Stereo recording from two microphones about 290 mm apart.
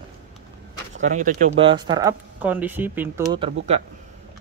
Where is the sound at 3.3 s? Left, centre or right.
Right.